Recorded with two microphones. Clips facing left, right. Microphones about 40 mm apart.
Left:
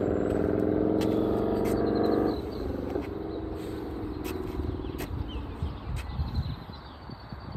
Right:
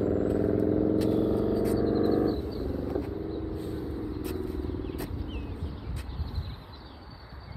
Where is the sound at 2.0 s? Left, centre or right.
Left.